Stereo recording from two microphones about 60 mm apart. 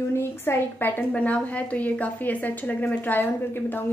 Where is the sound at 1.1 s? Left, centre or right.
Left.